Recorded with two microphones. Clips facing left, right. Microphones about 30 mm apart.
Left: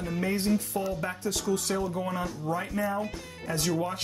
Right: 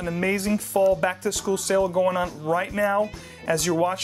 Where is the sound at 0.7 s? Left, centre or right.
Right.